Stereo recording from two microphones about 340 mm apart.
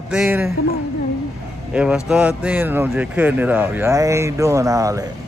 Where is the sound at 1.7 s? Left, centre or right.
Centre.